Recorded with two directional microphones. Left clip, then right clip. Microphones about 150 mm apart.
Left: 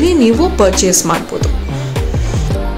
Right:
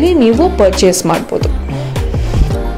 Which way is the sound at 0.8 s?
25° right (ahead or behind).